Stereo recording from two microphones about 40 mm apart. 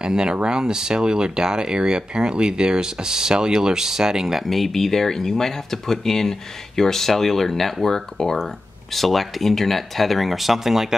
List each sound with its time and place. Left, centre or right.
0.0 s speech: right
4.5 s speech: centre